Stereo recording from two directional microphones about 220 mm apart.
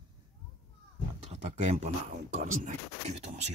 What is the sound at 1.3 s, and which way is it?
Speech, 30° right (ahead or behind).